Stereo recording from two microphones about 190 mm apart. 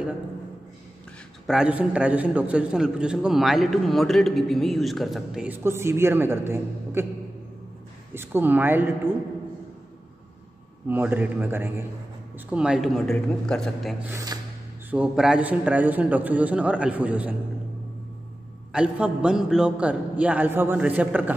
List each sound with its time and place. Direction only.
1.5 s a man's voice: 5° right (ahead or behind)
8.1 s a man's voice: 10° right (ahead or behind)
10.9 s a man's voice: 10° right (ahead or behind)
14.0 s a man's voice: 15° right (ahead or behind)
14.9 s a man's voice: 5° right (ahead or behind)
18.7 s a man's voice: 5° right (ahead or behind)